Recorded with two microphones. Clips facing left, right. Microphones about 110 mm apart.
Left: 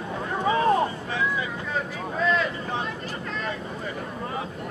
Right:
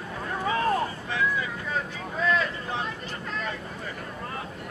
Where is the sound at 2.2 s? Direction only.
Centre (ahead or behind).